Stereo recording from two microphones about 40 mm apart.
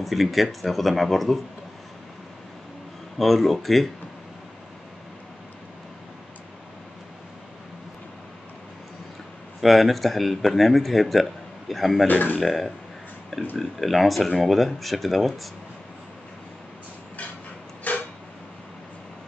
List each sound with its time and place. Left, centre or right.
0.0 s speech: centre
3.2 s speech: centre
9.6 s speech: centre
12.1 s speech: left
12.4 s speech: centre
17.9 s a sound: left